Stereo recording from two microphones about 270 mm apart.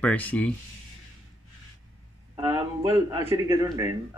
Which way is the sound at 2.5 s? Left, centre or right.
Centre.